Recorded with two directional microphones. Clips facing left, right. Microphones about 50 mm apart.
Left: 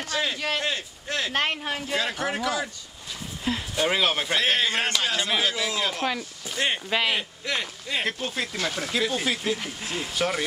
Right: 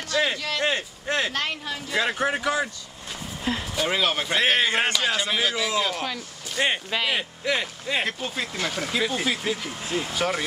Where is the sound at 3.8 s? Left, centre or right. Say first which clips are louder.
Left 1 dB; centre.